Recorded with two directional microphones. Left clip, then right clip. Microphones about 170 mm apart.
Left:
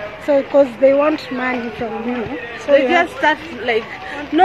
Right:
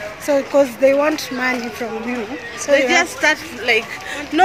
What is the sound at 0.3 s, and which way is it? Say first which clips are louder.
Speech: left 2 dB; 20° right (ahead or behind).